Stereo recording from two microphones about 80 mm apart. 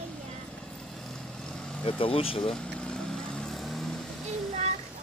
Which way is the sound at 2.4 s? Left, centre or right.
Centre.